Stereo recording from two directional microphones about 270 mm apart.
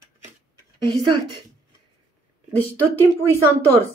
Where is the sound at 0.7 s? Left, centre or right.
Centre.